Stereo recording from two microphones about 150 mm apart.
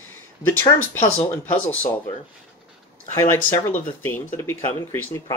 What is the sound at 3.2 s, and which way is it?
Speech, 20° left (ahead or behind).